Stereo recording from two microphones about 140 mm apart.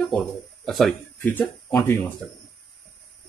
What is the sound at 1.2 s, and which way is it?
Speech, 15° left (ahead or behind).